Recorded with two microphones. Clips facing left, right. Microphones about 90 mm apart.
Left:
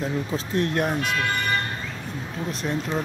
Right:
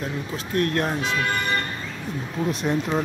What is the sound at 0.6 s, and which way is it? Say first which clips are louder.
Speech: right 1 dB; 20° left (ahead or behind).